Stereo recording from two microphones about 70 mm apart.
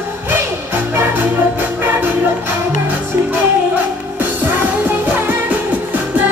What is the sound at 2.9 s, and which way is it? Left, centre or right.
Music, right.